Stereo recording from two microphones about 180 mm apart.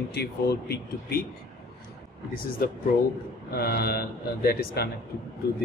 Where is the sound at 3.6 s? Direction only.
60° left (ahead or behind).